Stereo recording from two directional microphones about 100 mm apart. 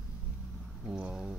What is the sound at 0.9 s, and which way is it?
Speech, 10° right (ahead or behind).